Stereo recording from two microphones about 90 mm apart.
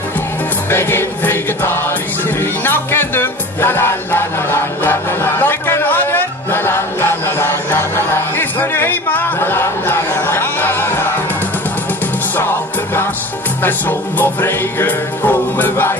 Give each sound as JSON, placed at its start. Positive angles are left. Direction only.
{"t": 0.7, "sound": "music", "side_deg": 25}
{"t": 13.6, "sound": "music", "side_deg": 20}